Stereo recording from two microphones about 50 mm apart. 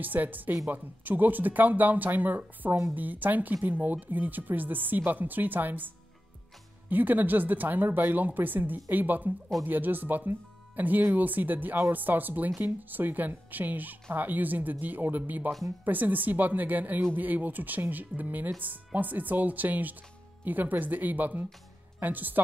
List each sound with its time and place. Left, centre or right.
0.0 s speech: right
6.9 s speech: right